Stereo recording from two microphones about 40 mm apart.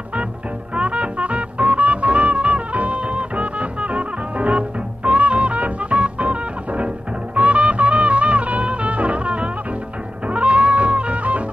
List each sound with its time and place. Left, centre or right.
0.7 s music: right